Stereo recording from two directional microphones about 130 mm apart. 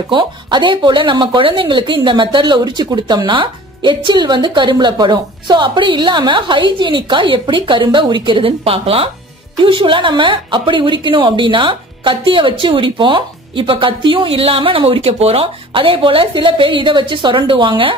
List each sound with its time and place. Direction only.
0.1 s speech: 35° right (ahead or behind)